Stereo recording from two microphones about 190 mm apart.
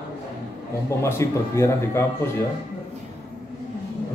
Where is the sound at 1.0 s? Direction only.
15° left (ahead or behind).